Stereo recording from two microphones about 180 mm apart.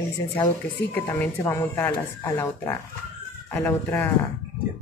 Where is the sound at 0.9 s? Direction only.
15° left (ahead or behind).